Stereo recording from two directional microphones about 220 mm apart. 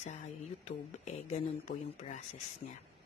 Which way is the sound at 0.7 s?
30° left (ahead or behind).